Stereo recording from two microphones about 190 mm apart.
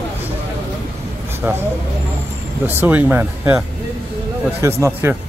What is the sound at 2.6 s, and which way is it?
Speech, 10° right (ahead or behind).